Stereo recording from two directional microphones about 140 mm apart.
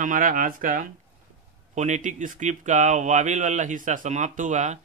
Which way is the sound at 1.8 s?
60° right (ahead or behind).